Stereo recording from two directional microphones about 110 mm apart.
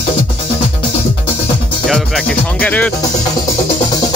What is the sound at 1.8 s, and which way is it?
Speech, centre (ahead or behind).